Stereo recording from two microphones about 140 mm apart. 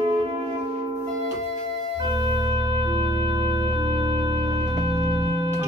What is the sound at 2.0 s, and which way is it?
Organ, 35° right (ahead or behind).